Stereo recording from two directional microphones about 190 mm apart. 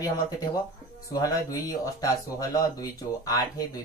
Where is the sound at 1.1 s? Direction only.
20° left (ahead or behind).